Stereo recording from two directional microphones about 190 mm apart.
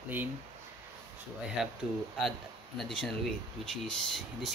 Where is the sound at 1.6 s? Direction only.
Centre (ahead or behind).